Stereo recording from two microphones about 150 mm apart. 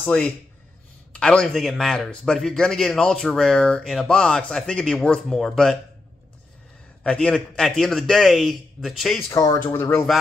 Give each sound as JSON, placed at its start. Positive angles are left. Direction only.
{"t": 0.0, "sound": "a man's voice", "side_deg": 10}
{"t": 7.0, "sound": "a man's voice", "side_deg": 5}
{"t": 9.3, "sound": "speech", "side_deg": 25}